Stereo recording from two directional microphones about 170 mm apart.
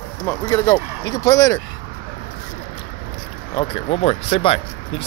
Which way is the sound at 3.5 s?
35° left (ahead or behind).